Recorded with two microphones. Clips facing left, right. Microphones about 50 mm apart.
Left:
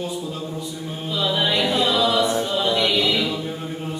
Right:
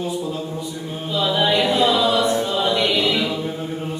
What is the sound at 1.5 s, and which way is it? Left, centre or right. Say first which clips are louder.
A capella: right 4 dB; right.